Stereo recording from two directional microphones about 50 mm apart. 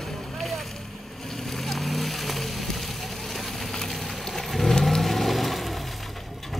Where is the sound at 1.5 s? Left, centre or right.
Centre.